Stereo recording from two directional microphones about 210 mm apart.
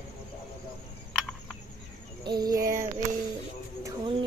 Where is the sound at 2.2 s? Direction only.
20° right (ahead or behind).